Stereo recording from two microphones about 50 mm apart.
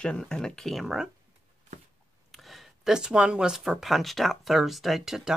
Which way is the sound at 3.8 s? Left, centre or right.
Centre.